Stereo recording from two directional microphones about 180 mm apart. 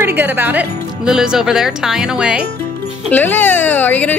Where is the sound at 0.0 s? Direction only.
10° right (ahead or behind).